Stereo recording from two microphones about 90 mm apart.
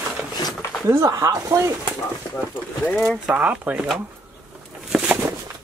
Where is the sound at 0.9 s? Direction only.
35° right (ahead or behind).